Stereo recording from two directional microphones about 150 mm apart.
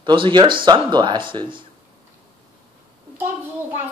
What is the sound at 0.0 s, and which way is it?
Speech, 35° right (ahead or behind).